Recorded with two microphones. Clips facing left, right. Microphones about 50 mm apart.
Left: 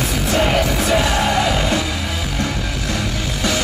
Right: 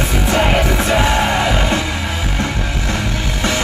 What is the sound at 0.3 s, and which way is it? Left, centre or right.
Music, right.